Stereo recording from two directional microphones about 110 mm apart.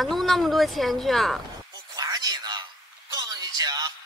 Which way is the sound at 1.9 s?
35° right (ahead or behind).